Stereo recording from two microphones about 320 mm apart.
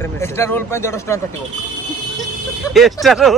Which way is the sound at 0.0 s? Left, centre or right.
Centre.